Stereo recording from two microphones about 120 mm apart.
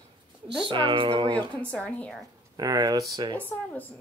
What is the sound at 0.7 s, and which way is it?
Speech, 40° right (ahead or behind).